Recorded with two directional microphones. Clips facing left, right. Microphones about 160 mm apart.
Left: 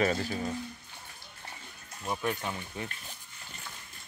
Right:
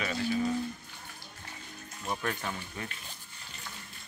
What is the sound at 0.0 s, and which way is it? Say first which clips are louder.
Speech: left 5 dB; 40° left (ahead or behind).